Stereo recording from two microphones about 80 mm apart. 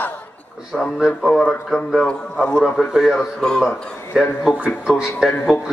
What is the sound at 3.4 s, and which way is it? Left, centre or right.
Speech, centre.